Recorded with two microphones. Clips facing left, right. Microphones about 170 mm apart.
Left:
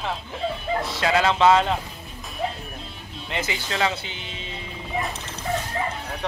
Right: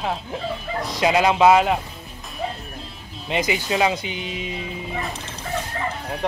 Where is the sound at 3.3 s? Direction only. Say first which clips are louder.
Right 6 dB; 15° right (ahead or behind).